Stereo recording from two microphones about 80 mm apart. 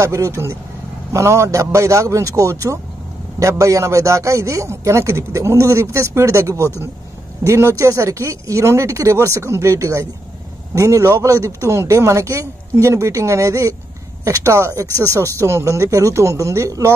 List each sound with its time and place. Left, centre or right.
0.0 s a man's voice: right